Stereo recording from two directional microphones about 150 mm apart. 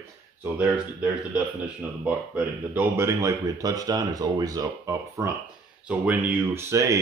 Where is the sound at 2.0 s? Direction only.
10° right (ahead or behind).